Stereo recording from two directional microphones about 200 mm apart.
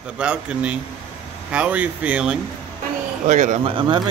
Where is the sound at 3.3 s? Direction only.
35° right (ahead or behind).